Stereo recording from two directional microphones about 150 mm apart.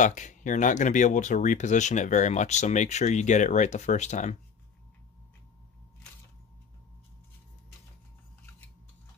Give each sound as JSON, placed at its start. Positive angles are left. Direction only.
{"t": 0.0, "sound": "speech", "side_deg": 55}